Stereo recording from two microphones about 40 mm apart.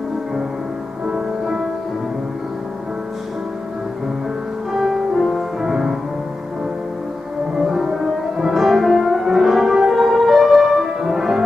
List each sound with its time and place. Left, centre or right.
1.0 s music: centre
4.7 s music: centre
7.5 s music: centre